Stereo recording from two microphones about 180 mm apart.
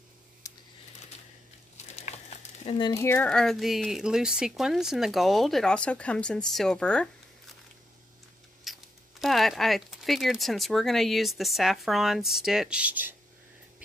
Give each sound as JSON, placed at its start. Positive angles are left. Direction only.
{"t": 0.4, "sound": "computer keyboard", "side_deg": 20}
{"t": 1.8, "sound": "crumpling", "side_deg": 40}
{"t": 2.9, "sound": "speech", "side_deg": 15}
{"t": 8.7, "sound": "a sound", "side_deg": 0}
{"t": 9.2, "sound": "speech", "side_deg": 0}